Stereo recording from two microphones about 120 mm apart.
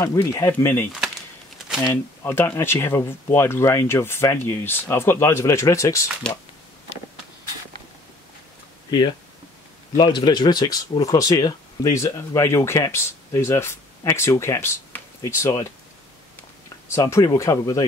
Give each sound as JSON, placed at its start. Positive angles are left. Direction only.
{"t": 0.0, "sound": "speech", "side_deg": 25}
{"t": 2.2, "sound": "speech", "side_deg": 20}
{"t": 6.2, "sound": "speech", "side_deg": 5}
{"t": 9.9, "sound": "speech", "side_deg": 35}
{"t": 16.9, "sound": "speech", "side_deg": 25}